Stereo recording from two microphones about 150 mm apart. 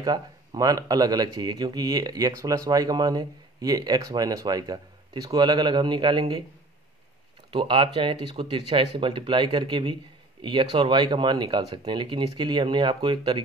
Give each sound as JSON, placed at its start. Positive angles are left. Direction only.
{"t": 0.0, "sound": "speech", "side_deg": -25}
{"t": 7.5, "sound": "speech", "side_deg": -35}